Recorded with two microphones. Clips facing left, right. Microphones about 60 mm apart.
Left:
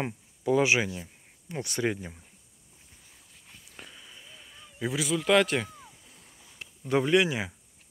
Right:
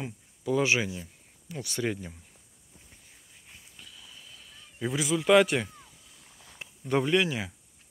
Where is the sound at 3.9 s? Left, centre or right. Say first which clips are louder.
Left 1 dB; left.